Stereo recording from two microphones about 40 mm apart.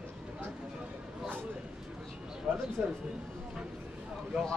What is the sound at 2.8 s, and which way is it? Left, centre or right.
Speech, right.